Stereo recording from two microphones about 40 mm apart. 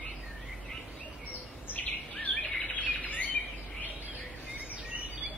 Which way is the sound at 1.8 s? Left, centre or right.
Left.